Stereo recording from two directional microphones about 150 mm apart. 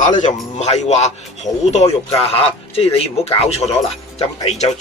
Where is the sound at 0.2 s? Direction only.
50° left (ahead or behind).